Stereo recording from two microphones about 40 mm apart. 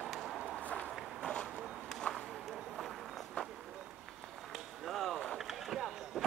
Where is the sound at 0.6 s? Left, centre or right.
Left.